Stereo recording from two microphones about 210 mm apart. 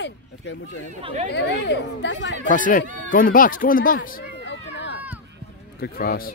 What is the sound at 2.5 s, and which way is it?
Speech, 40° left (ahead or behind).